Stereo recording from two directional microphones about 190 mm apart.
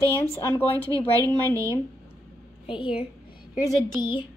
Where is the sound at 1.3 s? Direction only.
10° left (ahead or behind).